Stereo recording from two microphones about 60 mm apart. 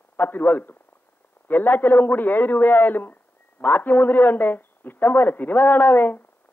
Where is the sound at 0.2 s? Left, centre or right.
Left.